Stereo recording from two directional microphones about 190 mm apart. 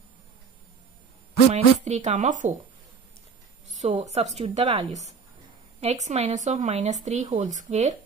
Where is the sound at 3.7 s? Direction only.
35° right (ahead or behind).